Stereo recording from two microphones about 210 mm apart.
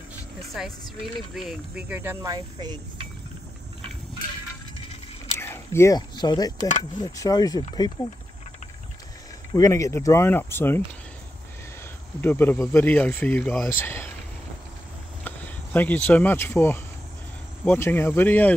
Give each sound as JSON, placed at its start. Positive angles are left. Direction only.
{"t": 0.4, "sound": "vehicle", "side_deg": 0}
{"t": 1.3, "sound": "speech", "side_deg": 0}
{"t": 5.4, "sound": "speech", "side_deg": 10}
{"t": 9.6, "sound": "speech", "side_deg": 15}
{"t": 12.2, "sound": "speech", "side_deg": 10}
{"t": 15.2, "sound": "speech", "side_deg": 10}